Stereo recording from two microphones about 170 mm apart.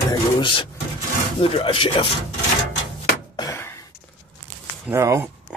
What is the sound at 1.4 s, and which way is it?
Speech, 30° left (ahead or behind).